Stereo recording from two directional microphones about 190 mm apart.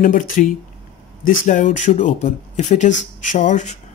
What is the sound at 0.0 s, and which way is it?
Speech, 45° left (ahead or behind).